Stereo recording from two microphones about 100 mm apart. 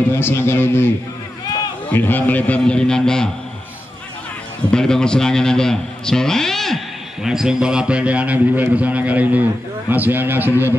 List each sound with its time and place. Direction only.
0.1 s a man's voice: 25° left (ahead or behind)
1.9 s a man's voice: 20° left (ahead or behind)
4.7 s a man's voice: 5° left (ahead or behind); by 10.5 s 20° right (ahead or behind)